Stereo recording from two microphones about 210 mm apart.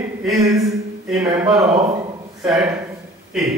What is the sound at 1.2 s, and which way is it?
Speech, 10° right (ahead or behind).